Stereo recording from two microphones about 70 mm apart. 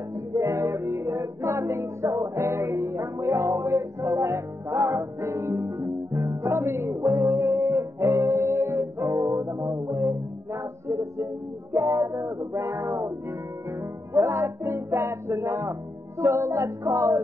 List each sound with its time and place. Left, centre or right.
0.1 s music: right
14.1 s music: right